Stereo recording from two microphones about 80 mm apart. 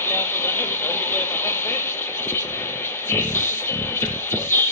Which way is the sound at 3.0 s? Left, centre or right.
Left.